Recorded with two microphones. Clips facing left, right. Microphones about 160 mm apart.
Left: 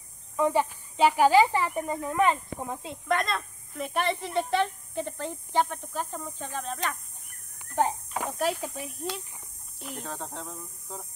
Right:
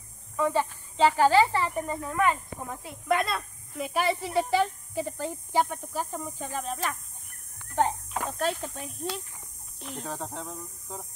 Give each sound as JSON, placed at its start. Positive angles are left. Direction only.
{"t": 0.4, "sound": "speech", "side_deg": 15}
{"t": 3.1, "sound": "speech", "side_deg": -5}
{"t": 7.5, "sound": "a sound", "side_deg": 5}
{"t": 8.2, "sound": "speech", "side_deg": 10}